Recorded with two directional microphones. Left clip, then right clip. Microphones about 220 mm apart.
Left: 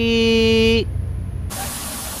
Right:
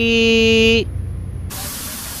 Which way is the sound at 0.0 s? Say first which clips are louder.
Right 3 dB; 5° right (ahead or behind).